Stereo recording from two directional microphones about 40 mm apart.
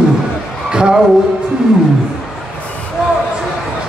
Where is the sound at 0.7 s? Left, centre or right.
Centre.